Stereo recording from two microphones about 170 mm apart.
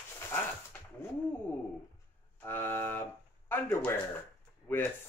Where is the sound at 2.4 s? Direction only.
15° left (ahead or behind).